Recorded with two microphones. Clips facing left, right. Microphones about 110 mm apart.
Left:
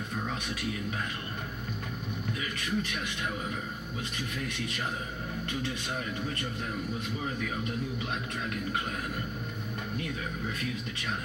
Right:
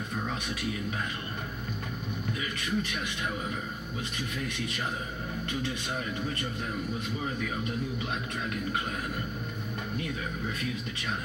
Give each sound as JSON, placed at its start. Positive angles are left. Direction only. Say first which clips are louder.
{"t": 2.5, "sound": "a man's voice", "louder": "right 1 dB", "side_deg": -20}
{"t": 4.5, "sound": "a man's voice", "louder": "right 1 dB", "side_deg": -20}